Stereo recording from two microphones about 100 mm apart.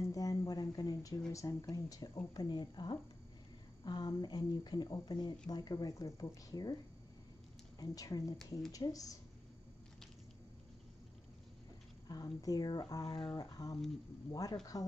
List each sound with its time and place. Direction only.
0.0 s a sound: 35° left (ahead or behind)
1.3 s speech: 30° left (ahead or behind)
7.8 s speech: 40° left (ahead or behind)
12.1 s speech: 40° left (ahead or behind)